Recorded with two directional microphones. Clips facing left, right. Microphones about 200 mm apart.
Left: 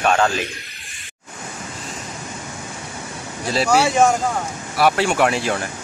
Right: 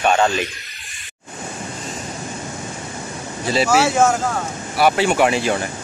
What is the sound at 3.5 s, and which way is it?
Speech, centre (ahead or behind).